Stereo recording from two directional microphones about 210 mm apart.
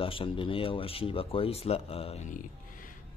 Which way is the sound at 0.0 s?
25° left (ahead or behind).